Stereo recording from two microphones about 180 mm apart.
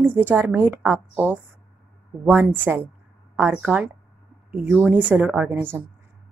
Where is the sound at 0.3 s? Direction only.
10° right (ahead or behind).